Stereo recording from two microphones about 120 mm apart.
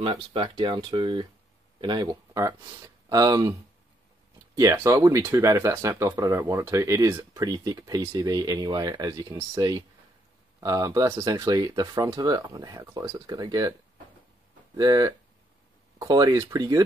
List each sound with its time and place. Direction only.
0.0 s speech: 50° right (ahead or behind); by 3.5 s 30° right (ahead or behind)
4.7 s speech: 25° right (ahead or behind)
14.8 s speech: 30° right (ahead or behind)